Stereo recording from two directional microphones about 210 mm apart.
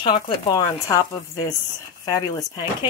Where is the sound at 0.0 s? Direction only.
20° left (ahead or behind).